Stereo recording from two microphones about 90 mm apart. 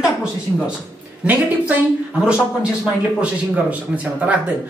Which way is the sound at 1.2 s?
20° right (ahead or behind).